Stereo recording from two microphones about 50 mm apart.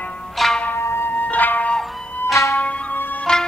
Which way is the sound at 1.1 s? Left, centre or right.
Left.